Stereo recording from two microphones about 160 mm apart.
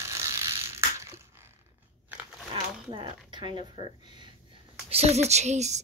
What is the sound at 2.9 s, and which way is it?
Speech, 30° right (ahead or behind).